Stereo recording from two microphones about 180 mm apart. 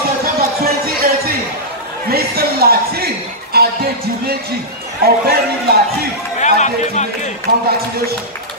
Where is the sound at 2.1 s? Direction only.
60° right (ahead or behind).